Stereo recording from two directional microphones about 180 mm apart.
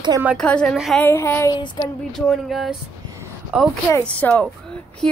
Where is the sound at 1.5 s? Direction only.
25° left (ahead or behind).